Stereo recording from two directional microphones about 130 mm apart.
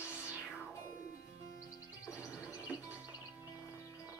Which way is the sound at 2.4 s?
25° left (ahead or behind).